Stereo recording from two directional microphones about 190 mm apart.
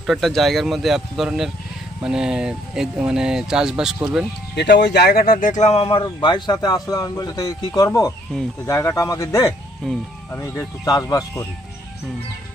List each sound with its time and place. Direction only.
0.0 s speech: centre (ahead or behind)
4.6 s speech: 65° left (ahead or behind); by 11.4 s 20° left (ahead or behind)